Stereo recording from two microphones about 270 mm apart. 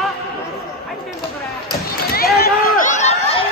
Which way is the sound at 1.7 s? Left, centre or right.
Left.